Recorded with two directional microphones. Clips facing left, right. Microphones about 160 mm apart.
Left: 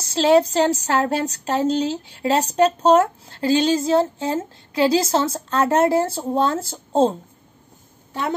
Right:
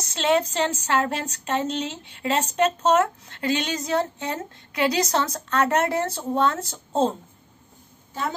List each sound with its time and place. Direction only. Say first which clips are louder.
0.0 s a woman's voice: left 6 dB; 30° left (ahead or behind)
8.1 s a woman's voice: left 5 dB; 70° left (ahead or behind)